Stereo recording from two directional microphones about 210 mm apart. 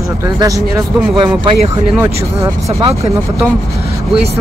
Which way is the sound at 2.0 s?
15° right (ahead or behind).